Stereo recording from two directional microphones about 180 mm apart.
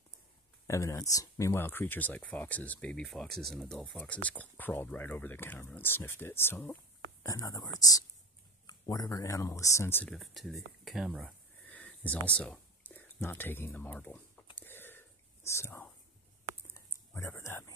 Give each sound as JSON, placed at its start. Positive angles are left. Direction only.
{"t": 0.7, "sound": "speech", "side_deg": 15}
{"t": 10.1, "sound": "speech", "side_deg": 0}
{"t": 14.6, "sound": "whispering", "side_deg": 10}
{"t": 16.7, "sound": "a sound", "side_deg": 15}